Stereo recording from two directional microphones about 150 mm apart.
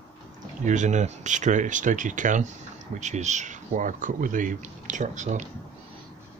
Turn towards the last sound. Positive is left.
turn(degrees=-55)  # may be behind; listen again after turning